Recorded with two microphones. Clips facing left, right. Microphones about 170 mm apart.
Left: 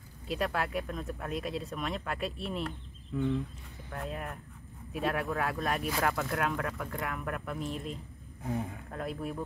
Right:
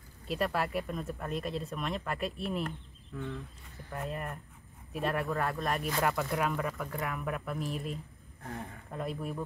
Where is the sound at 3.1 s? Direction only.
15° left (ahead or behind).